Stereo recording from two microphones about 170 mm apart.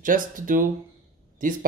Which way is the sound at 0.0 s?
50° right (ahead or behind).